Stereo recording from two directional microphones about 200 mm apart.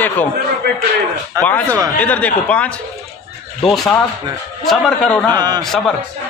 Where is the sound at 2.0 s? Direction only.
5° left (ahead or behind).